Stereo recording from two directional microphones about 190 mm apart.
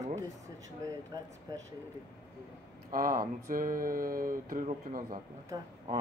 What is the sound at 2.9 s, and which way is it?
Speech, 50° right (ahead or behind).